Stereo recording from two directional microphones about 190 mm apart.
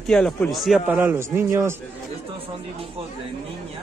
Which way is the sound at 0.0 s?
5° left (ahead or behind).